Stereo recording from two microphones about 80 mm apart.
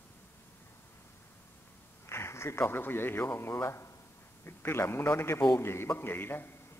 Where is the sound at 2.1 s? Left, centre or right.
Left.